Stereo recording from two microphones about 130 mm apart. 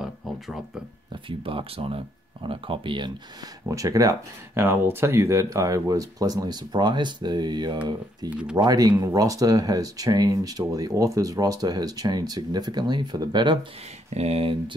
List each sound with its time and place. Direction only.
0.0 s a sound: centre (ahead or behind)
1.1 s speech: 40° right (ahead or behind)
3.6 s speech: 25° right (ahead or behind)
8.3 s speech: 10° right (ahead or behind)
8.5 s speech: 30° right (ahead or behind)
14.1 s speech: 55° right (ahead or behind)